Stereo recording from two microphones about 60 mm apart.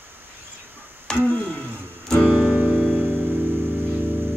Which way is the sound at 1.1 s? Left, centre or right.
Centre.